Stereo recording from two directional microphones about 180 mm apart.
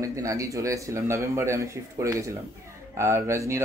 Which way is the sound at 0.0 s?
20° right (ahead or behind).